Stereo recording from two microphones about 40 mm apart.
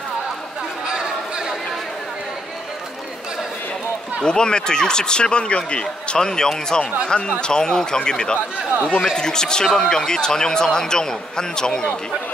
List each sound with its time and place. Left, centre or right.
4.2 s speech: left